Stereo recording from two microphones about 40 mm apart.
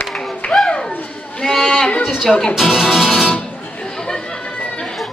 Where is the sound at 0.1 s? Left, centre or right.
Centre.